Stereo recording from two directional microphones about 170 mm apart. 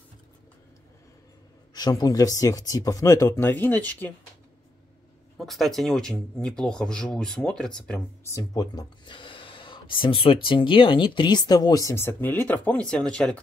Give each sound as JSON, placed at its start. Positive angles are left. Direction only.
{"t": 1.7, "sound": "speech", "side_deg": 25}
{"t": 5.4, "sound": "speech", "side_deg": 0}
{"t": 8.3, "sound": "speech", "side_deg": 20}